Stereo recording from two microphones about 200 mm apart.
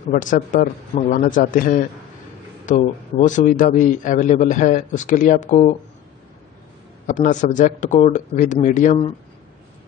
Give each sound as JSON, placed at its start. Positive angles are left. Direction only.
{"t": 0.1, "sound": "a man's voice", "side_deg": 40}
{"t": 7.1, "sound": "a man's voice", "side_deg": 40}